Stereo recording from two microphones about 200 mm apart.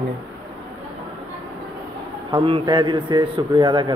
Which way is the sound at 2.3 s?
25° right (ahead or behind).